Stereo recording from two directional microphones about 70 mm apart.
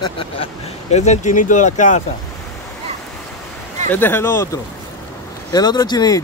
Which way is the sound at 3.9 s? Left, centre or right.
Left.